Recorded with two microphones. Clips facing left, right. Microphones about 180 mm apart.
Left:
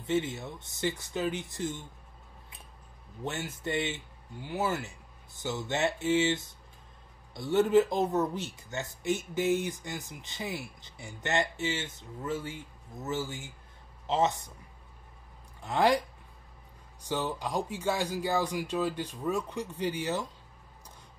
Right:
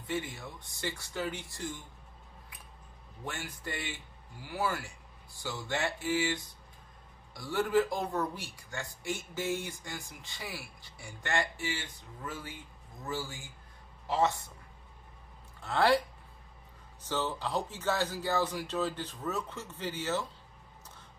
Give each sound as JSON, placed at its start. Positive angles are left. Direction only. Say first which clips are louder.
{"t": 0.0, "sound": "speech", "louder": "left 6 dB", "side_deg": 25}
{"t": 3.3, "sound": "speech", "louder": "left 6 dB", "side_deg": 25}
{"t": 15.6, "sound": "speech", "louder": "left 1 dB", "side_deg": 15}
{"t": 17.0, "sound": "speech", "louder": "left 1 dB", "side_deg": 15}